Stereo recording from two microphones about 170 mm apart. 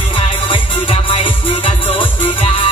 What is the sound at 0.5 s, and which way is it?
Music, 35° left (ahead or behind).